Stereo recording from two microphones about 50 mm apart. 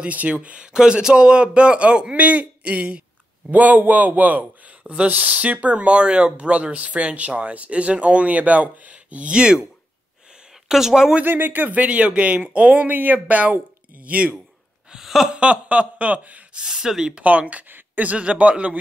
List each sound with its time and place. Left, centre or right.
0.0 s a man's voice: right
10.7 s speech: centre
11.2 s a man's voice: right
11.8 s speech: right
14.9 s a sound: centre
15.3 s speech: right
16.5 s speech: centre
17.2 s speech: right
18.1 s speech: right